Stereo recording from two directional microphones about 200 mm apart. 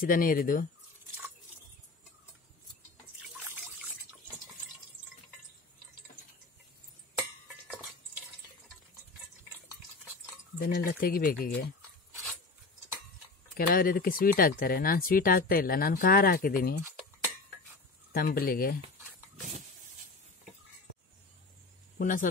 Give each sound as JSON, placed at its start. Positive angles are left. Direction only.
{"t": 0.0, "sound": "speech", "side_deg": 45}
{"t": 3.3, "sound": "trickle", "side_deg": -10}
{"t": 10.6, "sound": "speech", "side_deg": 45}
{"t": 13.6, "sound": "speech", "side_deg": 45}
{"t": 18.1, "sound": "speech", "side_deg": 45}
{"t": 21.9, "sound": "speech", "side_deg": 40}